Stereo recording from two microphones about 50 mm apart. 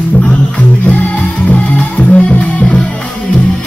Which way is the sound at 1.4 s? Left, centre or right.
Left.